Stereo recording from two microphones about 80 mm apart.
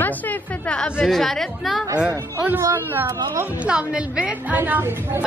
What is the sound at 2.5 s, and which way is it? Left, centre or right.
Speech, right.